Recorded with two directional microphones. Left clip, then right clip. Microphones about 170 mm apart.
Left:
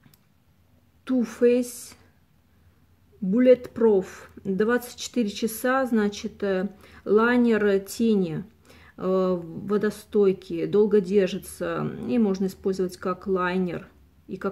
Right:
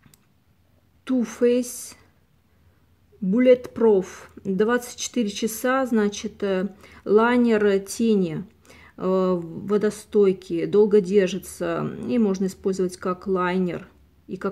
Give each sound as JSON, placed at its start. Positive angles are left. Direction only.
{"t": 1.0, "sound": "speech", "side_deg": -15}
{"t": 3.3, "sound": "speech", "side_deg": -15}